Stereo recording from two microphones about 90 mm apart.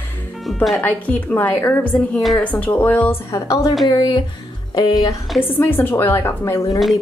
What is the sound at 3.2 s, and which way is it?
Speech, 40° left (ahead or behind).